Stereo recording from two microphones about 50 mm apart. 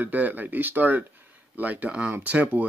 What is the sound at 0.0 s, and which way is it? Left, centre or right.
Speech, right.